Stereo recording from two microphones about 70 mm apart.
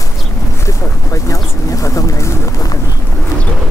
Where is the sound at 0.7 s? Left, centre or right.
Left.